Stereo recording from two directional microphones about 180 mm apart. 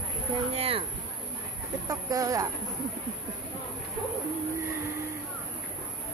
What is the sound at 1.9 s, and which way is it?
Speech, 20° right (ahead or behind).